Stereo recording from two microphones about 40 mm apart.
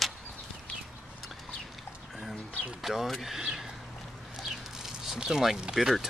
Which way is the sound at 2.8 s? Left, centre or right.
Centre.